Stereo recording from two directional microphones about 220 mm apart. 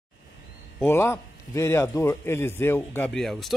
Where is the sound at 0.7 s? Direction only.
10° left (ahead or behind).